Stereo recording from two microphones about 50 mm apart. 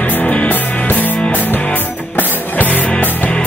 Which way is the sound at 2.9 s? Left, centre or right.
Left.